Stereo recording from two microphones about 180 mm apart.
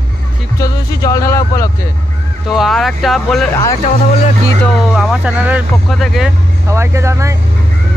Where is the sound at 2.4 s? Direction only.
Centre (ahead or behind).